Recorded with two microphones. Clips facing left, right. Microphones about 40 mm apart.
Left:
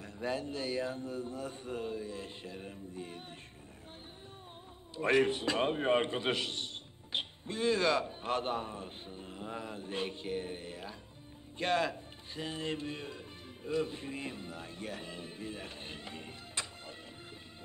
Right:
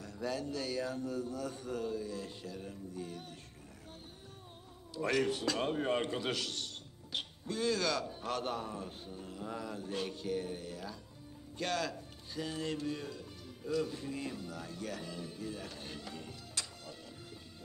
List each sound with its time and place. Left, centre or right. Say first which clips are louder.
0.0 s a man's voice: left 1 dB; left
4.9 s a man's voice: left 4 dB; left